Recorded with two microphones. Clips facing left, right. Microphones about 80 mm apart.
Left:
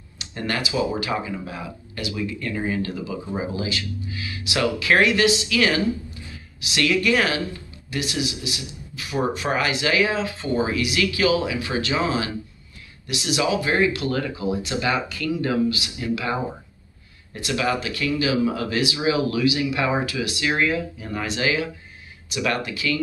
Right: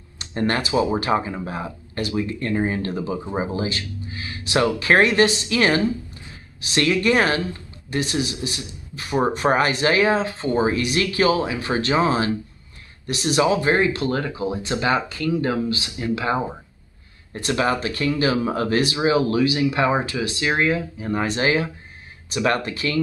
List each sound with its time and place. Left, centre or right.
0.2 s speech: right